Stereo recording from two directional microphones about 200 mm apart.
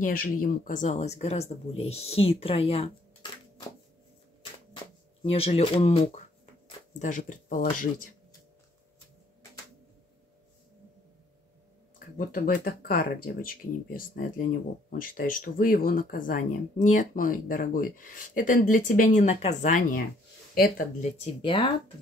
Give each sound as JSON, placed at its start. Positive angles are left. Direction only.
{"t": 0.0, "sound": "speech", "side_deg": 45}
{"t": 4.7, "sound": "speech", "side_deg": 30}
{"t": 12.2, "sound": "speech", "side_deg": 45}
{"t": 20.5, "sound": "speech", "side_deg": 50}
{"t": 21.0, "sound": "speech", "side_deg": 30}